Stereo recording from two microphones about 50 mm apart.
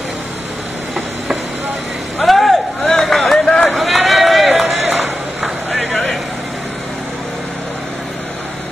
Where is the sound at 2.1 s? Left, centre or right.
Centre.